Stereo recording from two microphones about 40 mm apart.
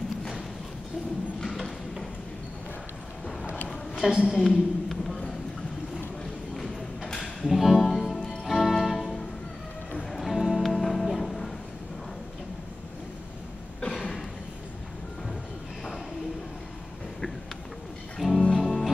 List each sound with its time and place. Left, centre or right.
1.4 s a sound: centre
3.9 s a woman's voice: centre
4.3 s a sound: centre
6.5 s a sound: centre
7.4 s music: centre
8.5 s music: centre
10.2 s music: centre
18.2 s music: centre
18.6 s music: centre